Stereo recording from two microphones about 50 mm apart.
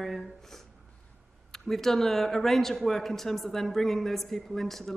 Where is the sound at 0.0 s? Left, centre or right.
Centre.